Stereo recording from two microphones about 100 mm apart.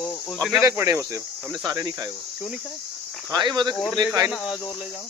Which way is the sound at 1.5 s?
45° right (ahead or behind).